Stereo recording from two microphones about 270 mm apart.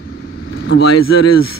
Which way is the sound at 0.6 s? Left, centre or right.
Left.